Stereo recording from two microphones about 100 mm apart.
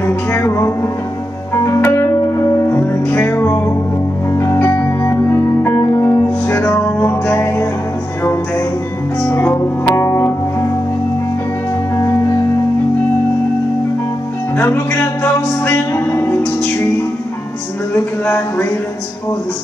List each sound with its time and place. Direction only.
0.0 s music: 20° left (ahead or behind)
9.9 s music: 30° left (ahead or behind)
14.9 s music: 15° left (ahead or behind)
17.9 s a sound: 20° left (ahead or behind)